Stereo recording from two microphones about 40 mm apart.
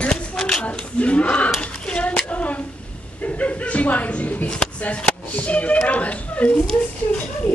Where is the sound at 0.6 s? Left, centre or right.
Left.